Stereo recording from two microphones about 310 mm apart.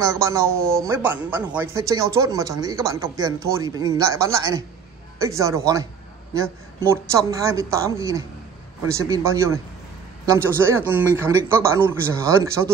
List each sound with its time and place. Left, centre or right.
0.0 s a man's voice: centre